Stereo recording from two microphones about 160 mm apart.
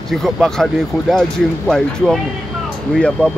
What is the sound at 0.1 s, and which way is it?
Speech, centre (ahead or behind).